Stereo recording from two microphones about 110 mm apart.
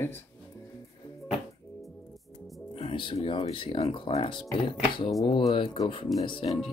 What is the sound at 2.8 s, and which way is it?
Speech, 55° left (ahead or behind).